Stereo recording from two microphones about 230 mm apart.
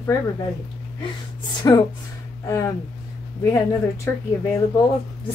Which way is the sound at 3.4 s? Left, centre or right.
Centre.